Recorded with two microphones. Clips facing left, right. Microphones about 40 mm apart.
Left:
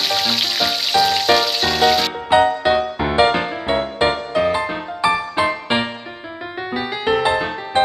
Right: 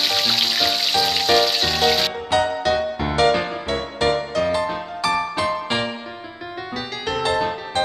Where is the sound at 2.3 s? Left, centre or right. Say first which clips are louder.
Left 6 dB; left.